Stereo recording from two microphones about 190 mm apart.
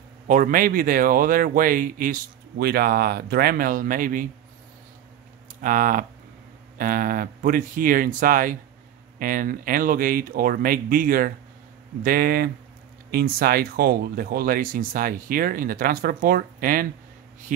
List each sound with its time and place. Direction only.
0.3 s speech: 45° right (ahead or behind)
5.6 s speech: 45° right (ahead or behind)